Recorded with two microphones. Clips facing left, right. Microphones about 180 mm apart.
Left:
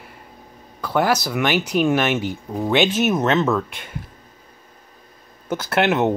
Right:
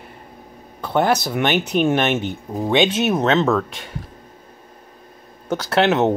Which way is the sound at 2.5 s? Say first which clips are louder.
Right 1 dB; 10° right (ahead or behind).